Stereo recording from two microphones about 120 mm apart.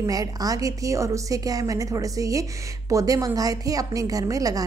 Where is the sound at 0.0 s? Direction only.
30° right (ahead or behind).